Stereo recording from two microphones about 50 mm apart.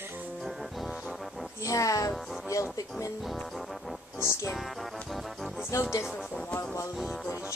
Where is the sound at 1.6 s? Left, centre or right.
Left.